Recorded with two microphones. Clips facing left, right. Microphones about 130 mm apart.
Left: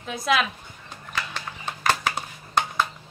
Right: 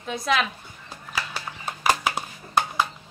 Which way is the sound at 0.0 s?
Centre (ahead or behind).